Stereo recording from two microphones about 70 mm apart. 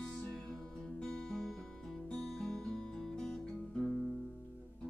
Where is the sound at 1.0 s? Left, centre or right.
Centre.